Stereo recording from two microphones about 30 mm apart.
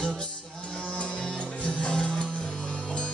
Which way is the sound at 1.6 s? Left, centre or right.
Left.